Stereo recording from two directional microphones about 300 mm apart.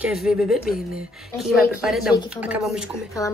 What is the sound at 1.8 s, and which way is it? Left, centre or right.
Speech, centre.